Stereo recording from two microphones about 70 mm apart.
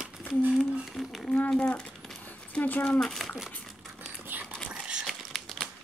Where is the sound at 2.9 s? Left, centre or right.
Centre.